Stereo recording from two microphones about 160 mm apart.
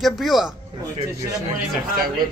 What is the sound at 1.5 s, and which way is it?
Speech, 65° right (ahead or behind).